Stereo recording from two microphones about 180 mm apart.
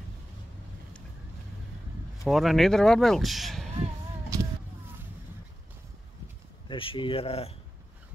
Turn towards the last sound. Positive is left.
turn(degrees=35)  # may be behind; listen again after turning